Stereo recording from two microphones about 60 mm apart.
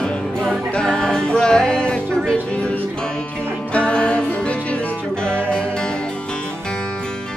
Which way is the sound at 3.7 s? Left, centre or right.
Centre.